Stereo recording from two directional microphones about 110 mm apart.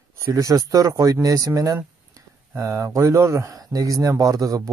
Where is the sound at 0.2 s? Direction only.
30° right (ahead or behind).